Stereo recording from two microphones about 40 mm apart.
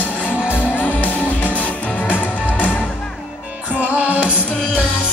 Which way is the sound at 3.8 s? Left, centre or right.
Right.